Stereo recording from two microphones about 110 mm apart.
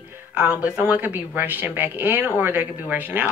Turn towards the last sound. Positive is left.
turn(degrees=-15)  # may be behind; listen again after turning